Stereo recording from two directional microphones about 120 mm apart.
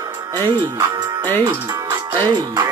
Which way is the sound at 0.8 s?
35° right (ahead or behind).